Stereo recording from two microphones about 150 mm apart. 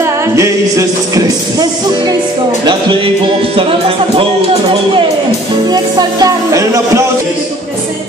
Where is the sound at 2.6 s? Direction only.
30° right (ahead or behind).